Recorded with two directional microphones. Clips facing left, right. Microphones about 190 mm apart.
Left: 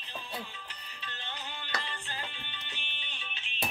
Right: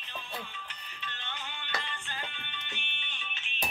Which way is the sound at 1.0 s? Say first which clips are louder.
Even; 35° left (ahead or behind).